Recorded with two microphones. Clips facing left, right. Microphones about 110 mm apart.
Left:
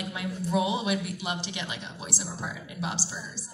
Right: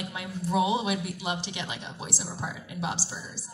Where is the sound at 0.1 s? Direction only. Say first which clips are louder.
Left 1 dB; 25° right (ahead or behind).